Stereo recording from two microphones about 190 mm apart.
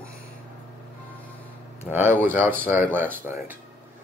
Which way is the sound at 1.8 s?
10° right (ahead or behind).